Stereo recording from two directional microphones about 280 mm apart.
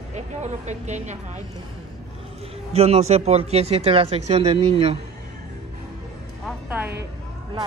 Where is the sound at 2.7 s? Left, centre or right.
Right.